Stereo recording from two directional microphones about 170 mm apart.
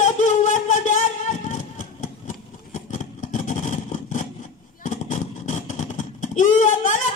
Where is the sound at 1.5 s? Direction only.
50° left (ahead or behind).